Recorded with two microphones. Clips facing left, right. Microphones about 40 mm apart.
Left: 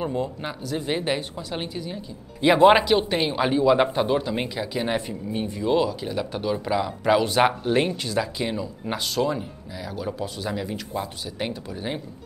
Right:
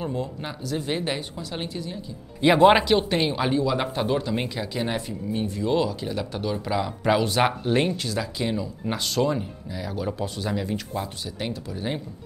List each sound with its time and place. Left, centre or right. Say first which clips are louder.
0.0 s speech: left 2 dB; centre
2.4 s speech: left 1 dB; centre
4.9 s speech: left 1 dB; centre